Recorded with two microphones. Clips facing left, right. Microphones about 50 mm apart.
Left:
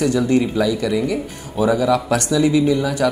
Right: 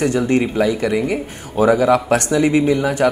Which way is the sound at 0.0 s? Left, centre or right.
Right.